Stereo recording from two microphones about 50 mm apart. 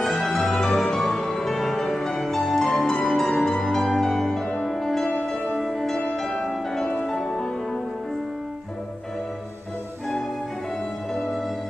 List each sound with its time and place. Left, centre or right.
0.0 s music: centre
11.1 s music: centre